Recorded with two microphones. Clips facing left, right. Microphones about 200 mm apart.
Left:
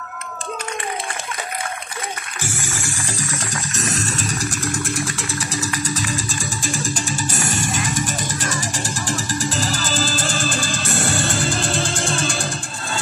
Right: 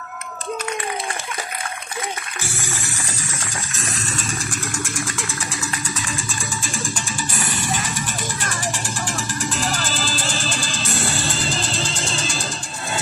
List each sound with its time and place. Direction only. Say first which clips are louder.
3.0 s a sound: left 4 dB; 90° left
3.9 s vehicle: left 3 dB; 40° left (ahead or behind)
5.9 s music: left 4 dB; 35° left (ahead or behind)
8.5 s music: left 2 dB; 35° left (ahead or behind)
9.9 s music: left 3 dB; 50° left (ahead or behind)